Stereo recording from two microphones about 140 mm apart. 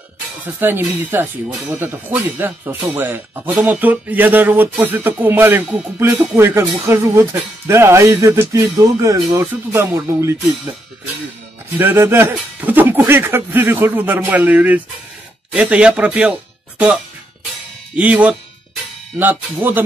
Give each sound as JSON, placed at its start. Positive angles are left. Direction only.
{"t": 0.4, "sound": "speech", "side_deg": -15}
{"t": 11.8, "sound": "speech", "side_deg": -15}